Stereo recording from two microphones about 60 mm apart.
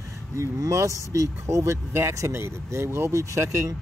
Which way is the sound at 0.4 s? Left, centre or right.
Right.